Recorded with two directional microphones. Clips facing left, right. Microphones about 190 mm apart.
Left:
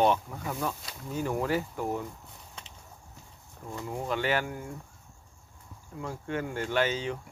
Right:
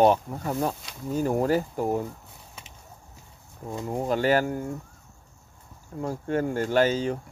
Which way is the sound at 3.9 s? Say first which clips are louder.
Right 6 dB; 40° right (ahead or behind).